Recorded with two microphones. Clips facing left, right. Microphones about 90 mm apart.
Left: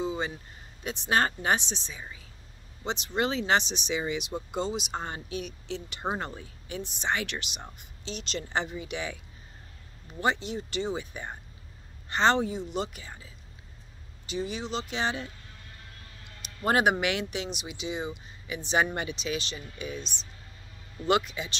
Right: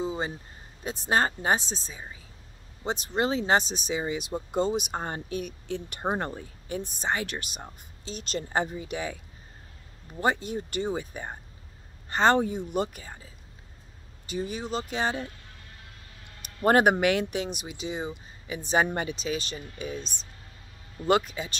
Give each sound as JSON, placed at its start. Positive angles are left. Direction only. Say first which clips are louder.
{"t": 0.0, "sound": "a sound", "louder": "right 1 dB", "side_deg": -35}
{"t": 0.8, "sound": "speech", "louder": "right 1 dB", "side_deg": -30}
{"t": 10.2, "sound": "speech", "louder": "right 2 dB", "side_deg": -45}
{"t": 14.3, "sound": "speech", "louder": "right 1 dB", "side_deg": -45}
{"t": 16.6, "sound": "speech", "louder": "right 4 dB", "side_deg": -45}
{"t": 21.1, "sound": "speech", "louder": "right 2 dB", "side_deg": -40}